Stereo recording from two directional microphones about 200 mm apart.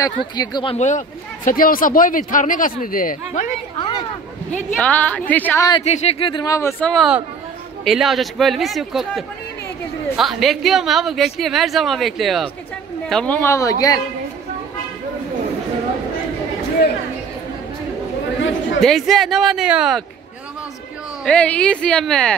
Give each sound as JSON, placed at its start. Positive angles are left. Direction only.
{"t": 0.0, "sound": "speech", "side_deg": 20}
{"t": 0.7, "sound": "speech", "side_deg": 35}
{"t": 4.7, "sound": "speech", "side_deg": 5}
{"t": 5.7, "sound": "speech", "side_deg": 30}
{"t": 6.9, "sound": "a woman's voice", "side_deg": 0}
{"t": 18.8, "sound": "a woman's voice", "side_deg": 0}
{"t": 21.2, "sound": "a woman's voice", "side_deg": 5}